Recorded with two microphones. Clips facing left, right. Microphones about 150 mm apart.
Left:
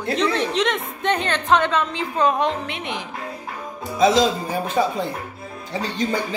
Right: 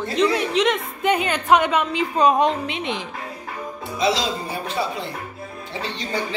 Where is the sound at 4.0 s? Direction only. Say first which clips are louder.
Left 5 dB; 50° left (ahead or behind).